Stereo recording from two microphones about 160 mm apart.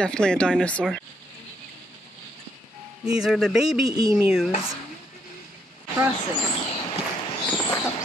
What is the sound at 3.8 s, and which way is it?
Speech, 25° right (ahead or behind).